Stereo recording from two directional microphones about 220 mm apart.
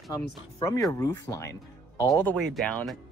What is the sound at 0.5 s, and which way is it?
Speech, 15° left (ahead or behind).